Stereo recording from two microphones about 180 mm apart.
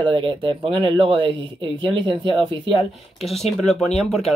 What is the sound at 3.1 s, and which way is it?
Speech, centre (ahead or behind).